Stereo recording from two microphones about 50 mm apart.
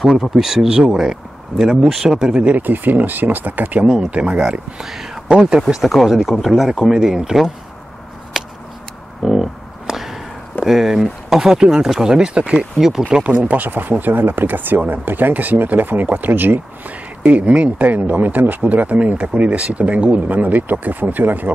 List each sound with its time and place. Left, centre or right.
0.0 s speech: centre
2.3 s speech: right
4.1 s speech: right
5.8 s speech: centre
8.3 s a sound: centre
10.6 s speech: centre
13.3 s speech: right
17.2 s speech: right